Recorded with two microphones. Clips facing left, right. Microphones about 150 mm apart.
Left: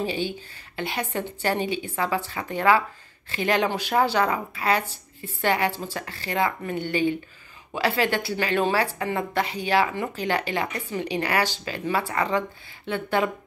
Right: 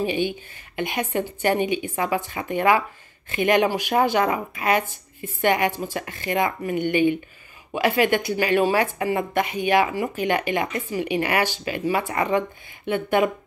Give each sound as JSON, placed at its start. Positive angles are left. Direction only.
{"t": 0.0, "sound": "a woman's voice", "side_deg": -15}